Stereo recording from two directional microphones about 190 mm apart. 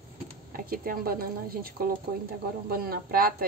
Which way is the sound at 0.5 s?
50° right (ahead or behind).